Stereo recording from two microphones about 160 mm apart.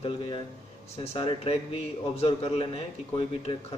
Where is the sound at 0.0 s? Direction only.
35° left (ahead or behind).